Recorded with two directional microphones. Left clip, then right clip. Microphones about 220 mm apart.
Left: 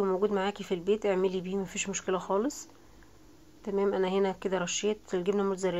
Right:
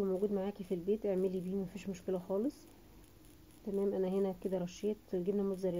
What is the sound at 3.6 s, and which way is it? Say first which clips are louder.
Speech: left 7 dB; 30° left (ahead or behind).